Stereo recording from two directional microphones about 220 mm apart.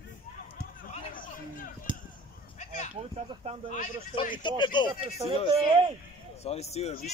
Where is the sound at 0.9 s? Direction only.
40° left (ahead or behind).